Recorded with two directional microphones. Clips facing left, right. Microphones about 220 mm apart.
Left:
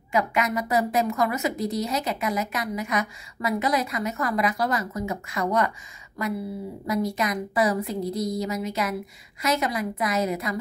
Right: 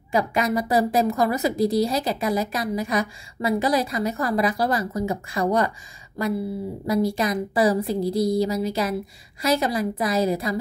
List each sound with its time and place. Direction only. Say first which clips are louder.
0.1 s a woman's voice: right 3 dB; 35° right (ahead or behind)
6.9 s a woman's voice: right 4 dB; 30° right (ahead or behind)